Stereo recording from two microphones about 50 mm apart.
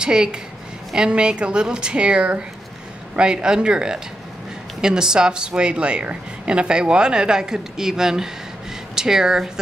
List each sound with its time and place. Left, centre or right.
0.0 s a woman's voice: centre